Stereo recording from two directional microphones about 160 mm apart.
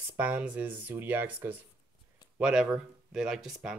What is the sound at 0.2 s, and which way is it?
Speech, 10° right (ahead or behind).